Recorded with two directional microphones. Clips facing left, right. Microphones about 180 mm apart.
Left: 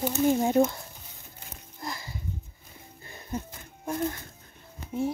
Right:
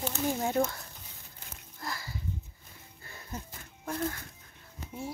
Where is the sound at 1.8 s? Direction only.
20° left (ahead or behind).